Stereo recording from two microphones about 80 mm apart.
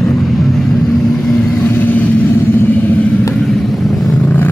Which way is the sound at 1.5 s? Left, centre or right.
Left.